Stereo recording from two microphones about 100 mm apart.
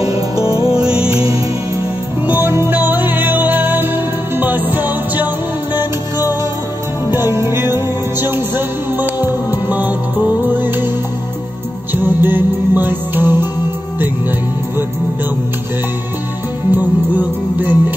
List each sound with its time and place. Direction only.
0.8 s music: 10° right (ahead or behind)
2.2 s music: 20° right (ahead or behind)
7.1 s music: 25° right (ahead or behind)
11.9 s music: 20° right (ahead or behind)
16.7 s music: 20° right (ahead or behind)